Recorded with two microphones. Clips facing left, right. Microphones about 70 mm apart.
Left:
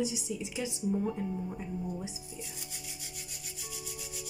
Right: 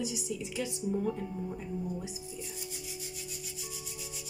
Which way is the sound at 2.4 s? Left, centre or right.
Left.